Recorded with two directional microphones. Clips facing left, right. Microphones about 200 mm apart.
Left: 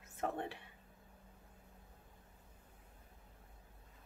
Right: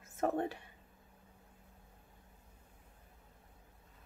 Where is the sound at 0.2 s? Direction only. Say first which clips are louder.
Right 6 dB; 45° right (ahead or behind).